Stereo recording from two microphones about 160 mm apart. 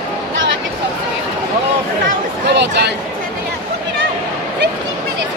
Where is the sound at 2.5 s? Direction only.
90° right.